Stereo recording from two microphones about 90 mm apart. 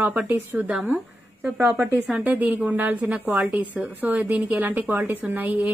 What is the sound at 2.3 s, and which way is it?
Speech, 15° right (ahead or behind).